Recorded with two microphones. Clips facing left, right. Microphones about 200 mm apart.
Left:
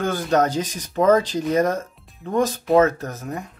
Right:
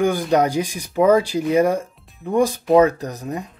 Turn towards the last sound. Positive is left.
turn(degrees=-15)  # may be behind; listen again after turning